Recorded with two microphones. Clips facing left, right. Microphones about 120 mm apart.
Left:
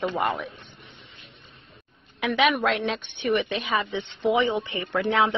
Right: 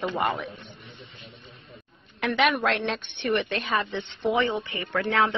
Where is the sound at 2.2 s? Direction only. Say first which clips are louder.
Left 1 dB; centre (ahead or behind).